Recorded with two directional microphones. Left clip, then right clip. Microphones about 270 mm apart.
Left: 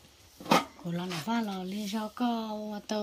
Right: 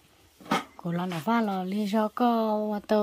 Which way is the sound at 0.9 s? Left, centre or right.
Centre.